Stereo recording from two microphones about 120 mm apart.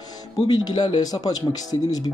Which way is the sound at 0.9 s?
35° left (ahead or behind).